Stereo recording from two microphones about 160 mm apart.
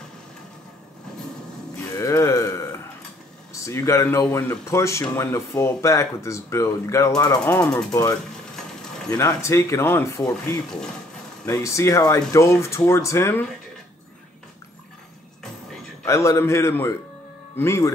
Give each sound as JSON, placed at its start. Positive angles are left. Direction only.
{"t": 2.0, "sound": "a sound", "side_deg": 20}
{"t": 3.6, "sound": "speech", "side_deg": 20}
{"t": 11.4, "sound": "speech", "side_deg": 20}
{"t": 16.1, "sound": "speech", "side_deg": 15}